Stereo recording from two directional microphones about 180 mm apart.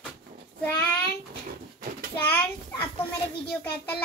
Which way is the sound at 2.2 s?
10° left (ahead or behind).